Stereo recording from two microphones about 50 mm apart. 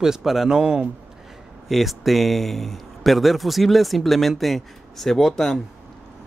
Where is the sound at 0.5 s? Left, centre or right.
Centre.